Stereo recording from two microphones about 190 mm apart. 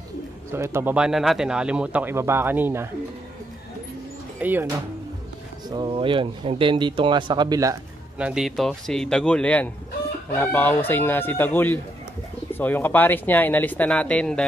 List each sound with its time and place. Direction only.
0.5 s speech: 15° right (ahead or behind)
4.4 s speech: 10° right (ahead or behind)
5.7 s speech: 25° right (ahead or behind)
8.2 s speech: 5° right (ahead or behind)